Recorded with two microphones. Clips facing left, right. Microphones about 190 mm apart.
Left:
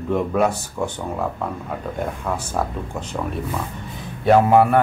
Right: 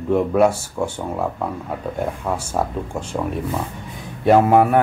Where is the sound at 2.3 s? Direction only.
10° right (ahead or behind).